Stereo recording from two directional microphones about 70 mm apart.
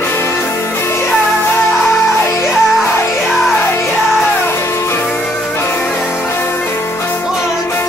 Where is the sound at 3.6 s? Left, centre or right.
Left.